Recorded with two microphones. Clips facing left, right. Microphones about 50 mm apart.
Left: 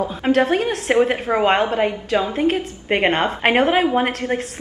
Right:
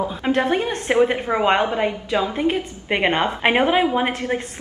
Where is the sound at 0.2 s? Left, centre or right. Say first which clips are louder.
Left 3 dB; centre.